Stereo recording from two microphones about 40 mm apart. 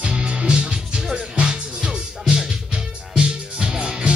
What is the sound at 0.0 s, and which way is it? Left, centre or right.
Music, right.